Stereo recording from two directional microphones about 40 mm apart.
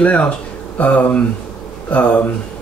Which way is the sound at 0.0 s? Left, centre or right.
Left.